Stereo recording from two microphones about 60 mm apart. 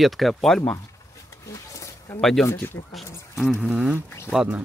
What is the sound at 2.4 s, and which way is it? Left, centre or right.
Speech, left.